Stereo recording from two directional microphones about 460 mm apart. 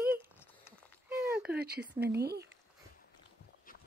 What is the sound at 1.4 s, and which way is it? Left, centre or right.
Speech, right.